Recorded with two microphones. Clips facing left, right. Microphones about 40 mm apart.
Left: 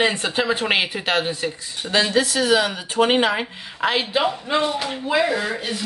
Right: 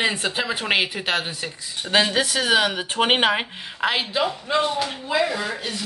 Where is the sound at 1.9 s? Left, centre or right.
Right.